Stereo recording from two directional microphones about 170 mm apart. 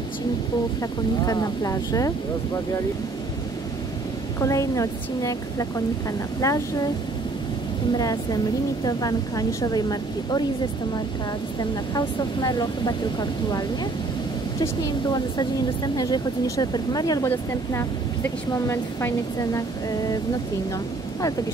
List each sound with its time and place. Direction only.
1.2 s a woman's voice: 20° left (ahead or behind)
4.4 s a woman's voice: 20° left (ahead or behind)
8.0 s a woman's voice: 20° left (ahead or behind)
11.9 s a woman's voice: 25° left (ahead or behind)